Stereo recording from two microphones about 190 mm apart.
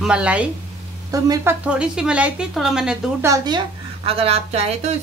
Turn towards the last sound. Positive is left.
turn(degrees=-35)  # may be behind; listen again after turning